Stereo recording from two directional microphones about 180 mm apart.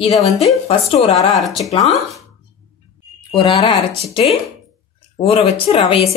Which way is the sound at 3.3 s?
30° left (ahead or behind).